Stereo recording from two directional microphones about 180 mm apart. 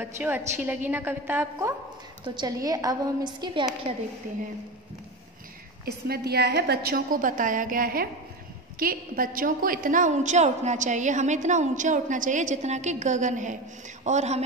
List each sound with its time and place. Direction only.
0.0 s a woman's voice: 10° right (ahead or behind)
2.2 s a woman's voice: 25° right (ahead or behind)
5.9 s a woman's voice: 60° right (ahead or behind); by 14.4 s 40° right (ahead or behind)